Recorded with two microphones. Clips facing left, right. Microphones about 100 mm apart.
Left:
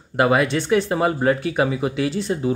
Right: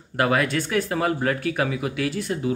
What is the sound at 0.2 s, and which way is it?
Speech, 20° left (ahead or behind).